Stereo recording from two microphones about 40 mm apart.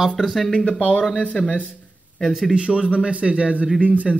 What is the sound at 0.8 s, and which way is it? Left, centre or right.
Speech, left.